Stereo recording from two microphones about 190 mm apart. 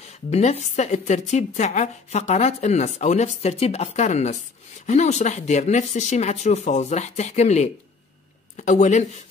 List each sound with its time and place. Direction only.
0.3 s speech: 35° left (ahead or behind)